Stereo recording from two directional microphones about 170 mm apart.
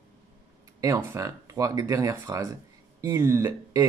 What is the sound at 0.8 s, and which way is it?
Speech, 15° right (ahead or behind).